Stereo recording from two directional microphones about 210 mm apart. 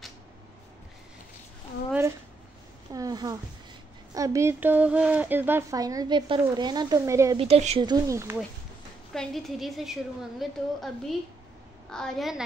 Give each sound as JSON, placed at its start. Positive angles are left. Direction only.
{"t": 1.9, "sound": "a sound", "side_deg": -10}
{"t": 4.1, "sound": "speech", "side_deg": -15}
{"t": 7.3, "sound": "speech", "side_deg": -30}
{"t": 9.1, "sound": "a woman's voice", "side_deg": 0}